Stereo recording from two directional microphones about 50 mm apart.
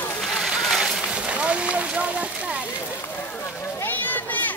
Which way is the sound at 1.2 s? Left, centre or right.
Right.